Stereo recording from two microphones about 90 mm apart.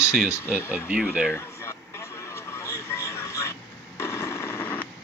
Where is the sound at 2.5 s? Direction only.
30° left (ahead or behind).